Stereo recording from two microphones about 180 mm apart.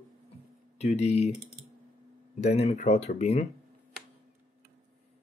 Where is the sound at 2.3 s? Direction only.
40° left (ahead or behind).